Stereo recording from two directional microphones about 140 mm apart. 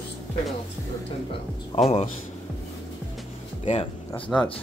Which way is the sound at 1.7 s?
40° left (ahead or behind).